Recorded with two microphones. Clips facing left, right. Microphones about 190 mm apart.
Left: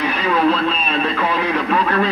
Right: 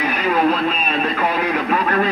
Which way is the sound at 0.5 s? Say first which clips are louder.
Left 1 dB; 45° right (ahead or behind).